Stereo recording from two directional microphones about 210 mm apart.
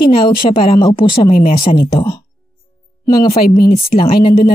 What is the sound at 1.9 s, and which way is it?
A woman's voice, 20° left (ahead or behind).